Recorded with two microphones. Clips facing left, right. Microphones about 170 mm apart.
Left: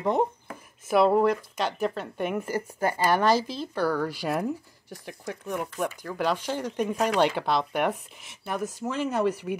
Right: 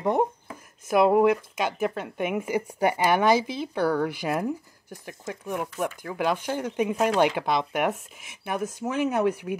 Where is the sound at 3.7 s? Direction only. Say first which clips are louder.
Right 2 dB; 20° right (ahead or behind); by 8.2 s 5° right (ahead or behind).